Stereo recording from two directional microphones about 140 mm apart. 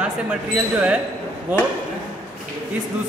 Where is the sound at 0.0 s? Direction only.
10° right (ahead or behind).